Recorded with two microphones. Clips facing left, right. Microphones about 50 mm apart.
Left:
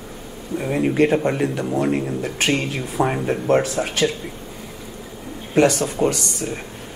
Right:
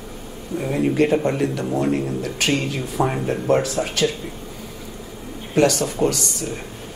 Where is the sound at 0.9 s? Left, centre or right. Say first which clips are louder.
Left 1 dB; left.